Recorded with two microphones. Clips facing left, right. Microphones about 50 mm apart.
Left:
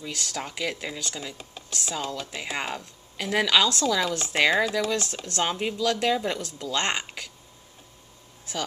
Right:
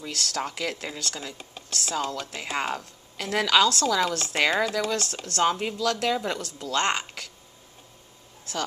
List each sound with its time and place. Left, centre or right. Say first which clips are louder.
0.1 s speech: right 4 dB; centre
4.4 s speech: left 2 dB; centre
5.2 s speech: right 3 dB; centre